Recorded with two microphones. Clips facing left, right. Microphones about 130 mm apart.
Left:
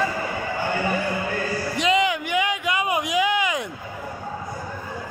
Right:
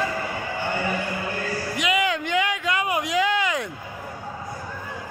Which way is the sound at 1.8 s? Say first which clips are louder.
Left 4 dB; 30° left (ahead or behind).